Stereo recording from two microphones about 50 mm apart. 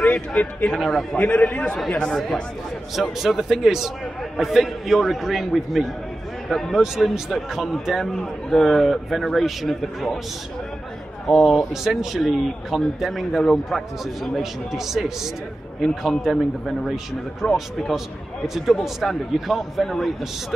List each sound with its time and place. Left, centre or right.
0.0 s a man's voice: left
2.9 s a man's voice: centre
11.2 s a man's voice: centre
13.4 s a man's voice: centre
18.5 s a man's voice: centre